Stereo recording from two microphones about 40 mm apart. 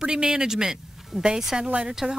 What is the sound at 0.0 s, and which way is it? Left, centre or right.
Speech, right.